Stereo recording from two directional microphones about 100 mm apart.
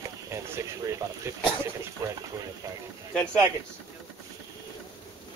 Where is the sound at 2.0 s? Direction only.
35° right (ahead or behind).